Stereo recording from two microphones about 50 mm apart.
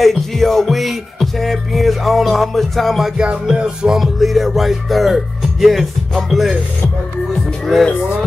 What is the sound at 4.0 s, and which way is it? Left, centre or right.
Speech, centre.